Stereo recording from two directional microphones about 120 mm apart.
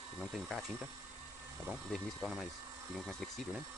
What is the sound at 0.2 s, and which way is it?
Speech, centre (ahead or behind).